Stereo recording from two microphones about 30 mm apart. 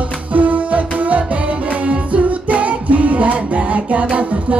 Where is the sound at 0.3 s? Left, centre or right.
Right.